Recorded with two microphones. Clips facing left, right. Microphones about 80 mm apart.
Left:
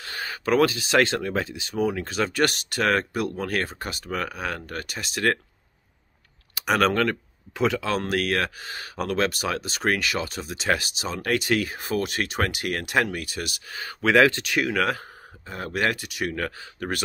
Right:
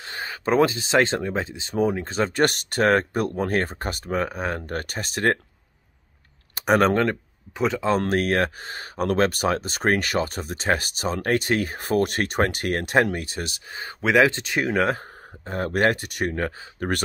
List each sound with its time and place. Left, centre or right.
0.0 s a sound: right
0.5 s speech: right
4.7 s speech: right
6.5 s speech: right
15.4 s speech: right
16.3 s speech: right